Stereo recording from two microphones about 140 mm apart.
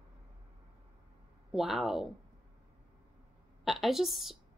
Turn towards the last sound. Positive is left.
turn(degrees=0)  # may be behind; listen again after turning